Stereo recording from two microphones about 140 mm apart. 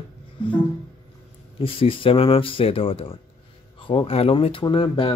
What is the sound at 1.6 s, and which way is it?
Speech, 40° left (ahead or behind).